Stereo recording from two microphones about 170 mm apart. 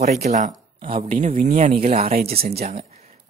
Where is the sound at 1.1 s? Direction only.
50° right (ahead or behind).